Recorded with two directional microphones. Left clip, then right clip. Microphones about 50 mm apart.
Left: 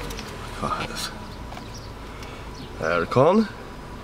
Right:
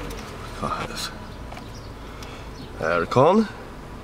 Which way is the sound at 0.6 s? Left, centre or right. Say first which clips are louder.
Even; centre.